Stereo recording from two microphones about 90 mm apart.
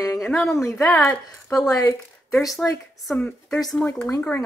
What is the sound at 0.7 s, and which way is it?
Speech, 30° left (ahead or behind).